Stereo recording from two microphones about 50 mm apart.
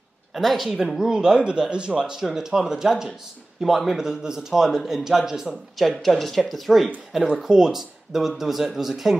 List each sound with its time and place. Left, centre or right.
0.3 s a man's voice: centre